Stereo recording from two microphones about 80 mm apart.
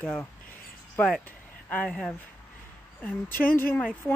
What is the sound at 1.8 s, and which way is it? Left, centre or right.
Speech, centre.